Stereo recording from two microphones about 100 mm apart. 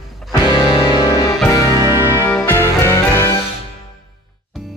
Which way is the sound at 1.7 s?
30° right (ahead or behind).